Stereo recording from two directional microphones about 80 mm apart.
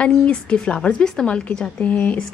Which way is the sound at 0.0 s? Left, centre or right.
Centre.